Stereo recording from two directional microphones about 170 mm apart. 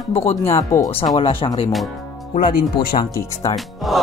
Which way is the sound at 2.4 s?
60° left (ahead or behind).